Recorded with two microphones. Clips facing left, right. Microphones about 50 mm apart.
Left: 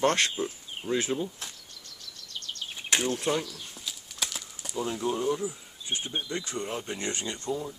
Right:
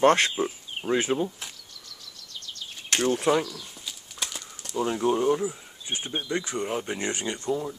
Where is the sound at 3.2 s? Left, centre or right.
Centre.